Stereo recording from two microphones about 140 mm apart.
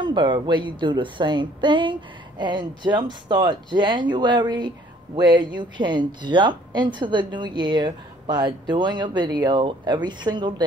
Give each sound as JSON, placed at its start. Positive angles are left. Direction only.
{"t": 0.0, "sound": "speech", "side_deg": -35}